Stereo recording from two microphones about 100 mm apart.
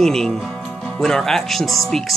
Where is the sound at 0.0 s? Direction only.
5° left (ahead or behind).